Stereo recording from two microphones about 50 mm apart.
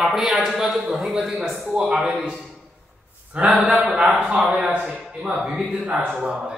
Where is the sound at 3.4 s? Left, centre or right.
Right.